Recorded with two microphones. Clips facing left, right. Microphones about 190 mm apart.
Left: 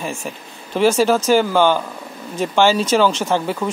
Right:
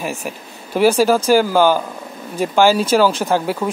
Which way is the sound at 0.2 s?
10° right (ahead or behind).